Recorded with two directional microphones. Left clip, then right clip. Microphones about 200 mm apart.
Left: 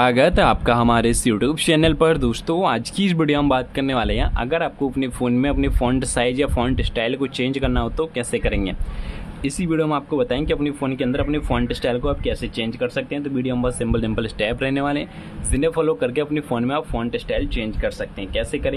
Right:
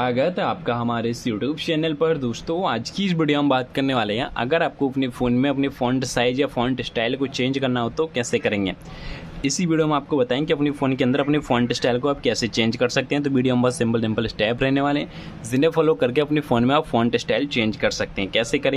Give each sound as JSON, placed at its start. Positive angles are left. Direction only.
{"t": 0.0, "sound": "speech", "side_deg": 20}